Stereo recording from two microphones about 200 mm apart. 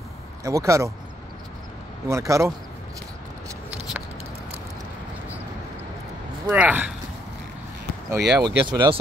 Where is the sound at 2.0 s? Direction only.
15° right (ahead or behind).